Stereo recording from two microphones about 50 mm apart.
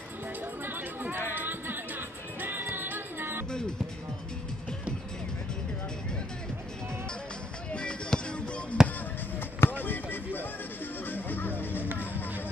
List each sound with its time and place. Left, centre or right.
0.7 s chatter: right
1.3 s music: right
7.7 s music: centre
8.8 s basketball bounce: centre
9.6 s a sound: left
11.1 s music: left